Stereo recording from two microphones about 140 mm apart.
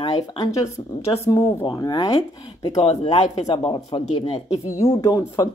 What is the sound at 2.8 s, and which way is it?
Speech, 45° left (ahead or behind).